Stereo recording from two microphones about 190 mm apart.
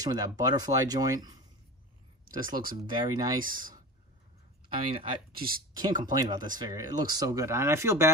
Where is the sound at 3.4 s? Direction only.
45° right (ahead or behind).